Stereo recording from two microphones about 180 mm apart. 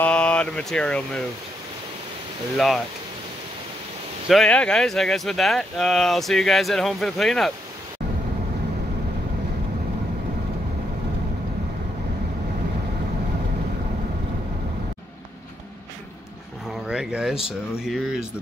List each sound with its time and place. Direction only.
0.0 s speech: 5° left (ahead or behind)
2.5 s speech: centre (ahead or behind)
4.3 s speech: 5° left (ahead or behind)
16.8 s speech: 5° right (ahead or behind)